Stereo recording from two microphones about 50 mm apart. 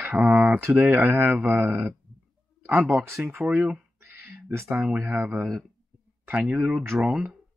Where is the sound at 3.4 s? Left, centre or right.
Centre.